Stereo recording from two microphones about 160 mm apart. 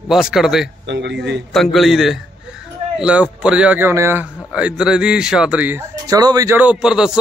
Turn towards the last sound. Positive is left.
turn(degrees=-5)  # may be behind; listen again after turning